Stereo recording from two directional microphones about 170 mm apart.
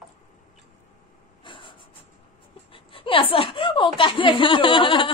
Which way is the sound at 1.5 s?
30° left (ahead or behind).